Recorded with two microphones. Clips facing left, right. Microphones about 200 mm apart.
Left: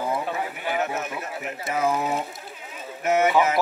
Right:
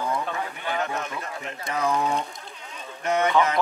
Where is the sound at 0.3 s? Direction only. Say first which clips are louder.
Left 2 dB; 20° left (ahead or behind).